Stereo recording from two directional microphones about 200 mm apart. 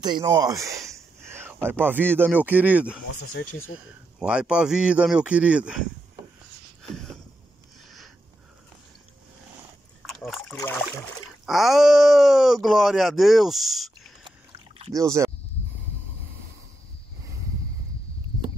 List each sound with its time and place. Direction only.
0.0 s speech: 20° right (ahead or behind)
4.2 s speech: 5° right (ahead or behind)
6.8 s a sound: centre (ahead or behind)
10.0 s a sound: centre (ahead or behind)
11.4 s speech: centre (ahead or behind)
15.0 s speech: 15° right (ahead or behind)